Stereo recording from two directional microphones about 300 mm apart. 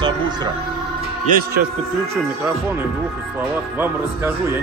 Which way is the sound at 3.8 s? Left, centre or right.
Centre.